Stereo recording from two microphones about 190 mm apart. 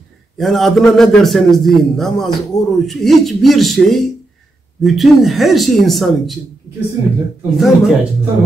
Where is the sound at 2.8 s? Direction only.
Centre (ahead or behind).